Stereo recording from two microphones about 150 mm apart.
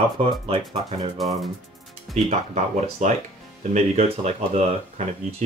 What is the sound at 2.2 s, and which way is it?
Speech, 45° right (ahead or behind).